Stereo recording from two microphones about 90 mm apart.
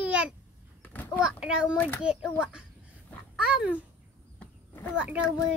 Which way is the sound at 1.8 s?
20° left (ahead or behind).